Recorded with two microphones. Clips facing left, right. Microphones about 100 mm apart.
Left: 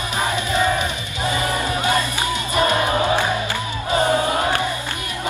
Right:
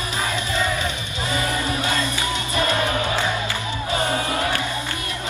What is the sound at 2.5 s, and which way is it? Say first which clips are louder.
Music: left 4 dB; 20° left (ahead or behind).